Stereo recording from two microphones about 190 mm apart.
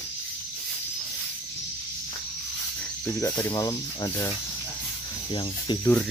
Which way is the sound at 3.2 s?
15° left (ahead or behind).